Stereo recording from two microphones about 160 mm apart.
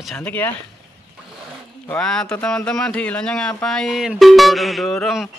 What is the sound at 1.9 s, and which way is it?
Speech, 5° left (ahead or behind).